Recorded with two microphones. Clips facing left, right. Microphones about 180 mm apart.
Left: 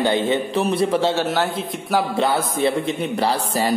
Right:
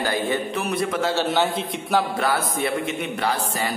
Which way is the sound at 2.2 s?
25° left (ahead or behind).